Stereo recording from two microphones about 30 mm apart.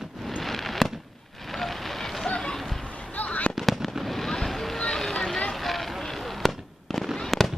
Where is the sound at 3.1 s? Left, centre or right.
Left.